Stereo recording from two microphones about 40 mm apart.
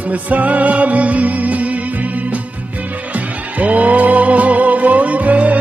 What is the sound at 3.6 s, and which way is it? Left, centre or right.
Music, right.